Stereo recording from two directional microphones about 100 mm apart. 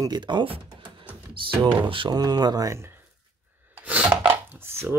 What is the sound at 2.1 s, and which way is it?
Speech, 40° right (ahead or behind).